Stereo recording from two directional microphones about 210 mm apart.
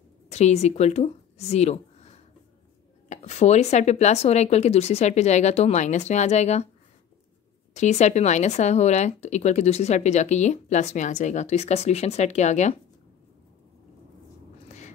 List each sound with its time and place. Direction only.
0.3 s speech: 30° left (ahead or behind)
7.7 s speech: 35° left (ahead or behind)